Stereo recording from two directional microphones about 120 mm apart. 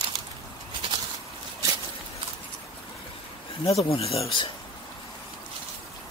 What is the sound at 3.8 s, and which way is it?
Speech, 55° left (ahead or behind).